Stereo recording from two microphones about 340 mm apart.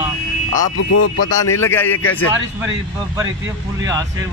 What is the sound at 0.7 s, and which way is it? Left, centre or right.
Speech, left.